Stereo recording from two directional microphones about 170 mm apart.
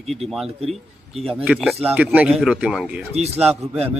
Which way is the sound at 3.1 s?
40° right (ahead or behind).